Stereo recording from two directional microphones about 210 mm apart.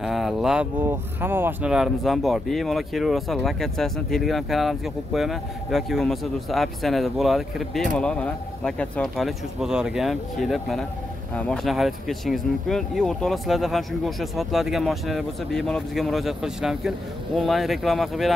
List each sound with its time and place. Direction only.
0.0 s speech: centre (ahead or behind)